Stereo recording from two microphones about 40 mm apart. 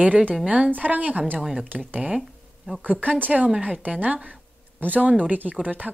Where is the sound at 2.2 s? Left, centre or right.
Centre.